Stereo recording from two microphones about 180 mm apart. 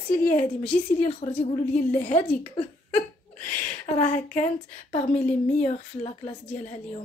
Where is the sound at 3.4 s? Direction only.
45° left (ahead or behind).